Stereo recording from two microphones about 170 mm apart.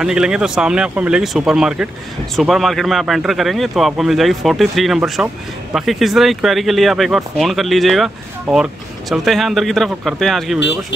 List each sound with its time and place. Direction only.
0.0 s speech: 5° right (ahead or behind)